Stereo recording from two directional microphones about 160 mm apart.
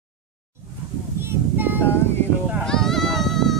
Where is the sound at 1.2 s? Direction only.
10° right (ahead or behind).